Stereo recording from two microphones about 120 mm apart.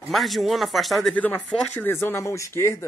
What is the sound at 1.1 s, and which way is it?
Speech, 10° left (ahead or behind).